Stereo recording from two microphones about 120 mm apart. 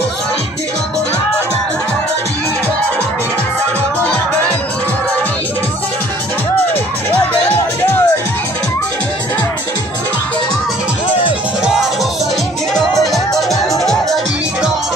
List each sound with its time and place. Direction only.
7.4 s music: 20° left (ahead or behind)
12.7 s music: centre (ahead or behind)